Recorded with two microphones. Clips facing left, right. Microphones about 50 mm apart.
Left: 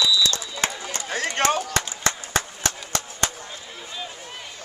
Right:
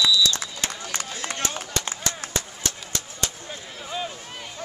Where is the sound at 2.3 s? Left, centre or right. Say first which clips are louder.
Left 4 dB; left.